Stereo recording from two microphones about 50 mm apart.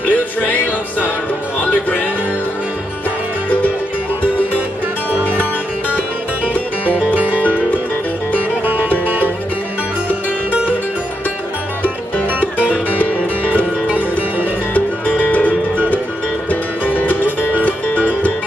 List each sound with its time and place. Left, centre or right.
0.0 s music: left
7.0 s music: right
8.9 s music: right
12.9 s music: left
15.3 s music: left